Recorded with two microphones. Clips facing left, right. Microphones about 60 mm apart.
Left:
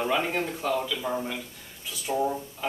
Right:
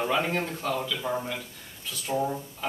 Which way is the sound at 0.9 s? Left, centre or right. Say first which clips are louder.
Even; centre.